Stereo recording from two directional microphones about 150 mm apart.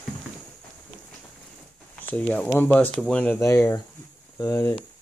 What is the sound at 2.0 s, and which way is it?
Speech, 10° left (ahead or behind).